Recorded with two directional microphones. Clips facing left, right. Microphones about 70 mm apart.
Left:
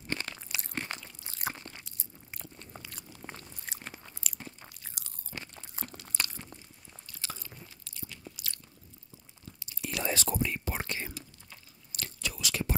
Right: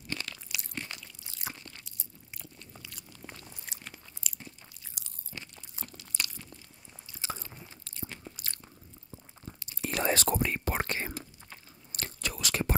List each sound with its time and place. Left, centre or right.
0.1 s crunch: left
3.1 s chewing: left
3.7 s biting: left
4.0 s crunch: left
5.3 s crunch: left
7.1 s biting: right
7.4 s biting: right
9.6 s whispering: right